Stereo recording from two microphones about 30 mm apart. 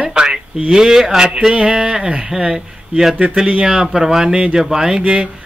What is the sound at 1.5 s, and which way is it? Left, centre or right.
Speech, right.